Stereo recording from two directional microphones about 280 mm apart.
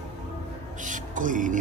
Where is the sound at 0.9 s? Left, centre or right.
Right.